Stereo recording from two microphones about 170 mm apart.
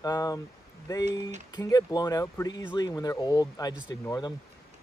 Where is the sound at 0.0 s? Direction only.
20° left (ahead or behind).